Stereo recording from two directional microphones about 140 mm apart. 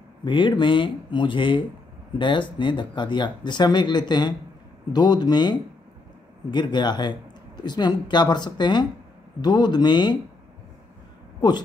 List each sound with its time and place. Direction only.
0.2 s speech: 35° left (ahead or behind)